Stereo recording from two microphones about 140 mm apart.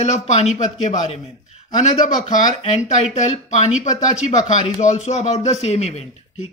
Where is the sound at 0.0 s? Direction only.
55° left (ahead or behind).